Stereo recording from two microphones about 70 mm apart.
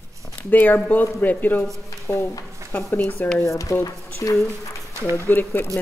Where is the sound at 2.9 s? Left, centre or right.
Left.